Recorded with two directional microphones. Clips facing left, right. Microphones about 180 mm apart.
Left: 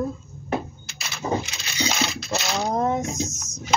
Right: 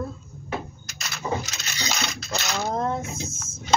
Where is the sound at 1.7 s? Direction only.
10° left (ahead or behind).